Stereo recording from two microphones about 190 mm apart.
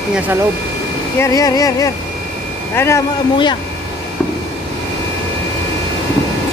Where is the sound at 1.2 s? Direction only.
15° left (ahead or behind).